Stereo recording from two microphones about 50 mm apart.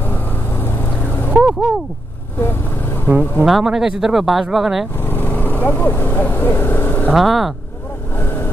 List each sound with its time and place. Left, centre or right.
0.1 s vehicle: left
1.4 s speech: centre
3.1 s speech: right
3.6 s speech: centre
5.0 s vehicle: left
7.2 s speech: centre